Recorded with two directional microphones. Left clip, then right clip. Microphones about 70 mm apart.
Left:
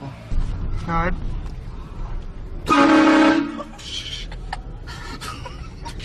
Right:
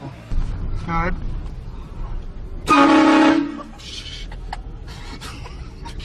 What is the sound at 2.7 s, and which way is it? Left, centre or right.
Vehicle horn, right.